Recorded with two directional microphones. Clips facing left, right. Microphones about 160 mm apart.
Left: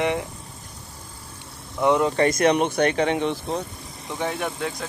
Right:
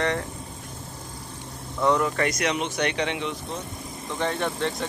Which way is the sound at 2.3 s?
50° left (ahead or behind).